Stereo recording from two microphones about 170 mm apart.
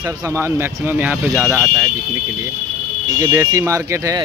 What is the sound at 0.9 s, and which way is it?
Speech, 10° right (ahead or behind).